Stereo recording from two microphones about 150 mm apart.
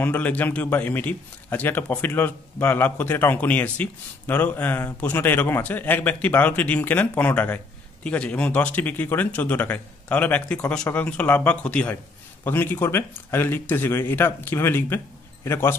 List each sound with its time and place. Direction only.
0.0 s a man's voice: 10° left (ahead or behind)